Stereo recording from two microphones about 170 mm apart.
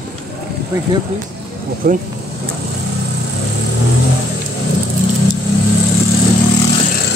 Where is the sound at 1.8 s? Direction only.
60° right (ahead or behind).